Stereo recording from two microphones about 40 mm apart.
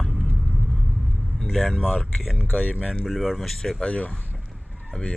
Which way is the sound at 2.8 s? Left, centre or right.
Centre.